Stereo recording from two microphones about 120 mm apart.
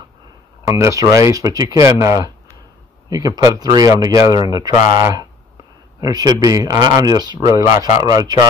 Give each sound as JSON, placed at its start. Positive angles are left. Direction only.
{"t": 0.7, "sound": "speech", "side_deg": -25}
{"t": 5.9, "sound": "speech", "side_deg": -30}